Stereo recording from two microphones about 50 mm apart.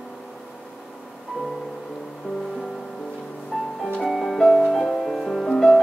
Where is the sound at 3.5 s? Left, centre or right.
Centre.